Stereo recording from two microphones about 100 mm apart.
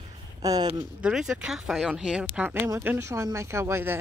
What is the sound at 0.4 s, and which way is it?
Speech, 40° right (ahead or behind).